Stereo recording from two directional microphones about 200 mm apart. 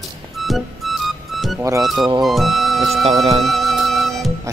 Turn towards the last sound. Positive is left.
turn(degrees=0)  # may be behind; listen again after turning